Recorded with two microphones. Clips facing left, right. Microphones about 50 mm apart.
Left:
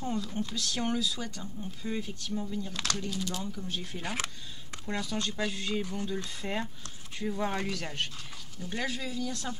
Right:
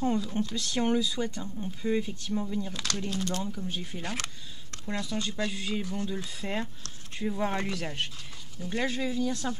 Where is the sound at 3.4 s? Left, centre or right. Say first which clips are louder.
Right 2 dB; centre.